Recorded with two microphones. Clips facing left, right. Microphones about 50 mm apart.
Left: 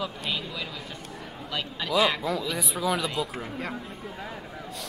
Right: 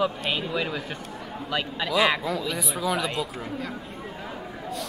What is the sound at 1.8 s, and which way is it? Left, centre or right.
Speech, centre.